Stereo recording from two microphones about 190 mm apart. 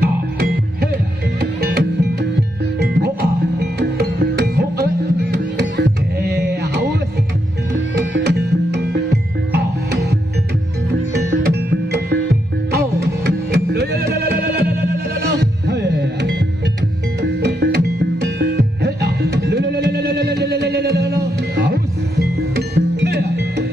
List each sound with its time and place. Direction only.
0.0 s music: 55° right (ahead or behind)
3.5 s music: 55° right (ahead or behind)
8.1 s music: 60° right (ahead or behind)